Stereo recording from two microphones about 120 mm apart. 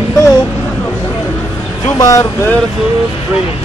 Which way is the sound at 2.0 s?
30° left (ahead or behind).